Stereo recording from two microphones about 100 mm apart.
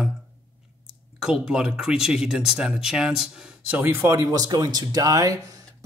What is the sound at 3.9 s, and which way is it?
Speech, 30° right (ahead or behind).